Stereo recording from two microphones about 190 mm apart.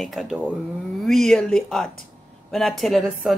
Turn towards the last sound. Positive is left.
turn(degrees=0)  # may be behind; listen again after turning